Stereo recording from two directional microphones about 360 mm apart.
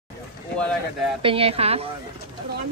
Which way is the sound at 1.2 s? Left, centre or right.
Centre.